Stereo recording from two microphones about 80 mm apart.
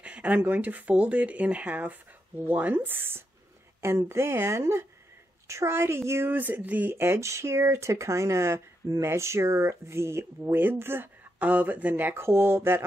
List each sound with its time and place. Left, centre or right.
0.0 s speech: centre
11.3 s speech: centre